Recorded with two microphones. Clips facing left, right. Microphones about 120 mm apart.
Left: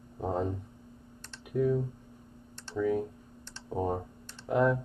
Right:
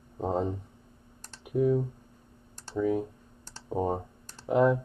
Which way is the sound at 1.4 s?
20° right (ahead or behind).